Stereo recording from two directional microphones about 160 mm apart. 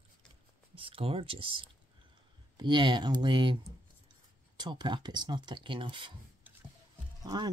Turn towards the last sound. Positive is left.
turn(degrees=-25)  # may be behind; listen again after turning